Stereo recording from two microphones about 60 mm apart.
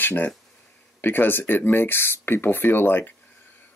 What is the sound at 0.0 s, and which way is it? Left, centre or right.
Speech, left.